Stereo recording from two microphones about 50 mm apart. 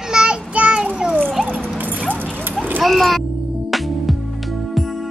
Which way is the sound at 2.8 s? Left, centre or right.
Centre.